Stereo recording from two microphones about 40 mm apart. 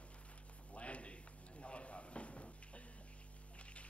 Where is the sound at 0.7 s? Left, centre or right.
Left.